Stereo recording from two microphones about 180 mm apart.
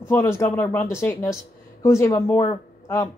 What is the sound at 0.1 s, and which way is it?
Speech, 15° left (ahead or behind).